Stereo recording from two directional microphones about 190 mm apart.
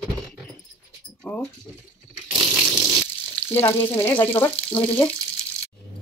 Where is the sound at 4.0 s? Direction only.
10° left (ahead or behind).